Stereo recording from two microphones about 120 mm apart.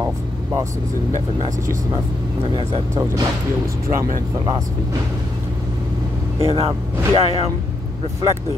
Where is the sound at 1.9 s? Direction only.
50° right (ahead or behind).